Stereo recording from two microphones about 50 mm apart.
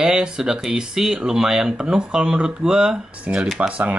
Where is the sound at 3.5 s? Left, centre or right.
Right.